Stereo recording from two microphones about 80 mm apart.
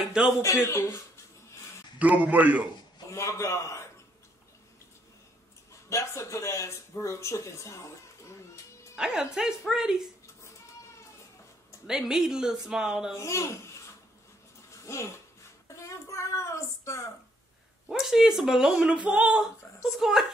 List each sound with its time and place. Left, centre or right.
0.4 s speech: left
2.0 s a man's voice: centre
3.1 s speech: left
5.9 s speech: left
8.9 s a woman's voice: centre
11.9 s a woman's voice: centre
13.1 s a child's voice: left
14.7 s a sound: left
15.7 s speech: left
17.8 s a woman's voice: centre